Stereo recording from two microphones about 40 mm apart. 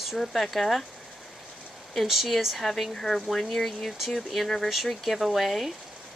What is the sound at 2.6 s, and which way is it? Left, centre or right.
Speech, centre.